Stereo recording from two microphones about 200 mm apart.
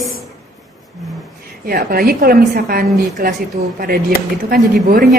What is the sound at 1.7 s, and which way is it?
A woman's voice, 45° right (ahead or behind).